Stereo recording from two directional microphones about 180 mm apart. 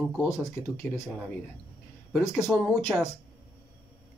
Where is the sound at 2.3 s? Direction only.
Centre (ahead or behind).